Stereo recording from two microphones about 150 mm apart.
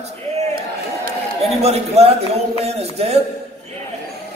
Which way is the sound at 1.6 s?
45° right (ahead or behind).